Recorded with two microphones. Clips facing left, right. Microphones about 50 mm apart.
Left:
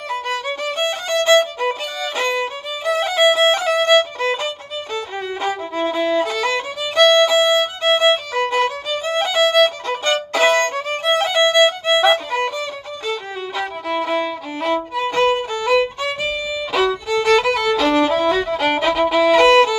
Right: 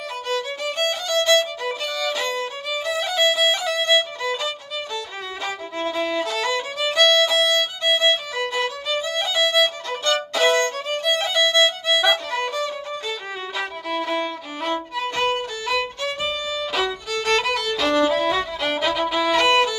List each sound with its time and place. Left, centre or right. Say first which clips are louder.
0.5 s music: left 4 dB; left
1.2 s violin: left 6 dB; left
4.2 s music: left 5 dB; left
5.4 s violin: left 5 dB; left
6.9 s violin: left 5 dB; centre
7.8 s music: left 4 dB; left
8.5 s violin: left 4 dB; left
12.0 s music: left 5 dB; centre
13.6 s violin: left 4 dB; centre
14.7 s violin: left 5 dB; centre
17.1 s music: left 6 dB; centre
18.8 s violin: left 5 dB; centre
19.1 s violin: left 7 dB; centre